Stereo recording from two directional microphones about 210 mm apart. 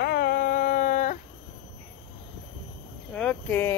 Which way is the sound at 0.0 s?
50° left (ahead or behind).